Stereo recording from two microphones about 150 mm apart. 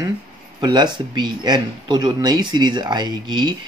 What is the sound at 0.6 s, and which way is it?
Speech, 30° right (ahead or behind).